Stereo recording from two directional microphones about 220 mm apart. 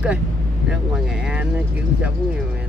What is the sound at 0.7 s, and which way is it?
Speech, 5° right (ahead or behind).